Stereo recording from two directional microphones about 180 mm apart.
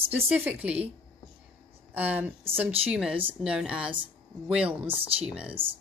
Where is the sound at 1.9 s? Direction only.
10° right (ahead or behind).